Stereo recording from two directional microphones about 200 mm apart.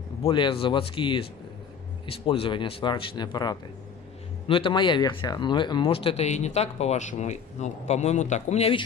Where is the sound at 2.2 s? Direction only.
25° left (ahead or behind).